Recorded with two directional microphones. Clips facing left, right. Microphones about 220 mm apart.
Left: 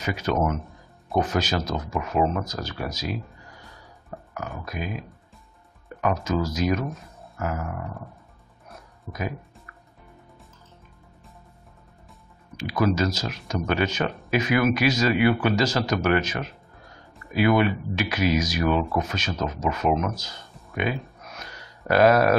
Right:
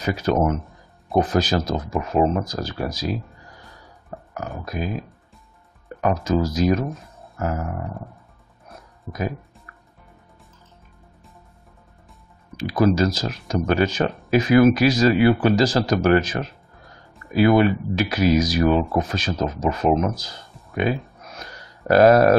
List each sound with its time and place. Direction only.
0.0 s speech: 35° right (ahead or behind)
6.2 s speech: 35° right (ahead or behind)
12.5 s speech: 35° right (ahead or behind)
21.3 s a sound: 35° right (ahead or behind)